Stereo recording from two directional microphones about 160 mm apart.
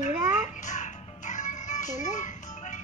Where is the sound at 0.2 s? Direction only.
15° right (ahead or behind).